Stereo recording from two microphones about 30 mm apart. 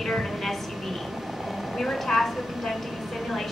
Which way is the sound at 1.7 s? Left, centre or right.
Centre.